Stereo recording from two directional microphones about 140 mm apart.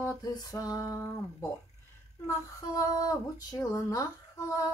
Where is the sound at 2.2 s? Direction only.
25° left (ahead or behind).